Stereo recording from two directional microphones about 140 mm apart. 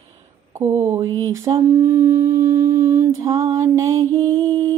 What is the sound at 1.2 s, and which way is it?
Mantra, 25° right (ahead or behind).